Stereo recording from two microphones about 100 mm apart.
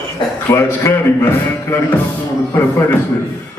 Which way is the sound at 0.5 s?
25° left (ahead or behind).